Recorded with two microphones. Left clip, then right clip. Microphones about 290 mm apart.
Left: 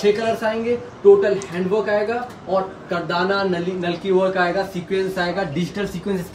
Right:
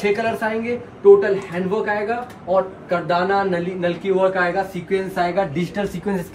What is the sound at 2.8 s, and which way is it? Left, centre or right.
Speech, centre.